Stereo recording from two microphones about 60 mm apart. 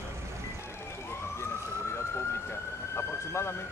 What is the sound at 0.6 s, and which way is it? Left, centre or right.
Emergency vehicle, left.